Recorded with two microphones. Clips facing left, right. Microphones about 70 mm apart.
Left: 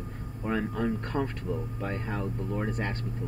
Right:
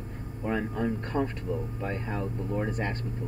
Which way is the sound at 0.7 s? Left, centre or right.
Right.